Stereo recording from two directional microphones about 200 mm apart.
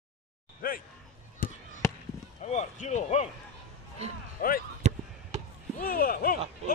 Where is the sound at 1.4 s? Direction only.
45° left (ahead or behind).